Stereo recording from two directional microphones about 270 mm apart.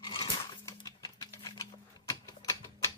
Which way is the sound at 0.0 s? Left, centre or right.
Centre.